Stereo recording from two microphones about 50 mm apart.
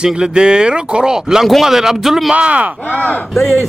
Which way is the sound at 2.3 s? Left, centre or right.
Right.